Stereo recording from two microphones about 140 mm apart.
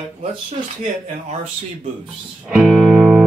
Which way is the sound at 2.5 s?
5° right (ahead or behind).